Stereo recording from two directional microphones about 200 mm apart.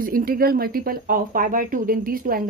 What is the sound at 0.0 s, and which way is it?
Speech, 45° right (ahead or behind).